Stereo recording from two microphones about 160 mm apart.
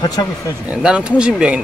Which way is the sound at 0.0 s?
25° left (ahead or behind).